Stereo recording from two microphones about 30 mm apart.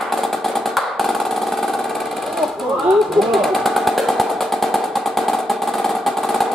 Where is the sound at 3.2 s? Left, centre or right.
Centre.